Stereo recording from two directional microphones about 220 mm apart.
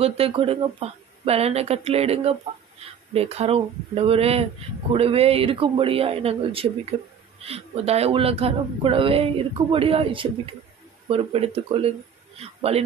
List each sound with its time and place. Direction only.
0.0 s a woman's voice: 25° right (ahead or behind)